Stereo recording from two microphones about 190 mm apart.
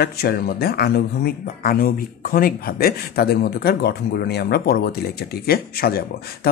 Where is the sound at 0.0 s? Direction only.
55° left (ahead or behind).